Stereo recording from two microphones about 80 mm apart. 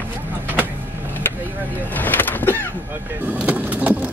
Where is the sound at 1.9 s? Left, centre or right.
Left.